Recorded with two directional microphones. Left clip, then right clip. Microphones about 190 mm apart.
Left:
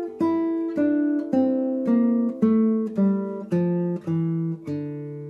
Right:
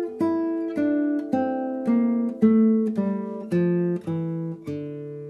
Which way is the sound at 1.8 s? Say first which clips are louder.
Left 2 dB; 20° right (ahead or behind).